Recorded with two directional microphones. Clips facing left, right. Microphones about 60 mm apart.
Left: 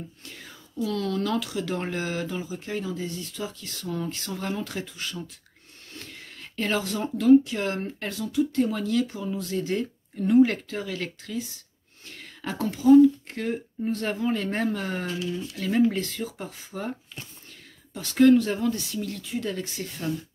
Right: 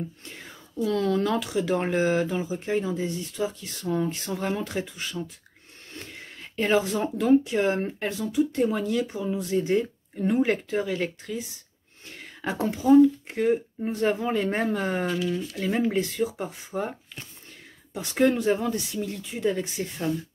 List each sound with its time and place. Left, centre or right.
0.7 s speech: right
5.9 s a sound: right
6.7 s speech: right
17.9 s speech: centre